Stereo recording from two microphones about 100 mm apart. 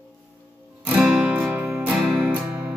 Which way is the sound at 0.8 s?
10° right (ahead or behind).